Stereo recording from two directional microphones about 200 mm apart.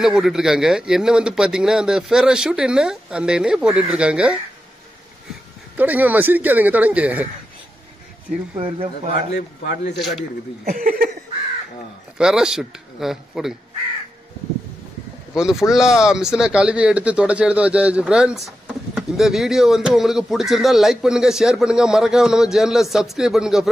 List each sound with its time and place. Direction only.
0.0 s speech: centre (ahead or behind)
5.8 s speech: 10° right (ahead or behind)
8.5 s speech: 25° right (ahead or behind)
9.3 s a man's voice: 55° left (ahead or behind)
9.9 s speech: centre (ahead or behind)
10.6 s a sound: 40° right (ahead or behind)
12.2 s speech: 5° right (ahead or behind)
15.3 s speech: 5° right (ahead or behind)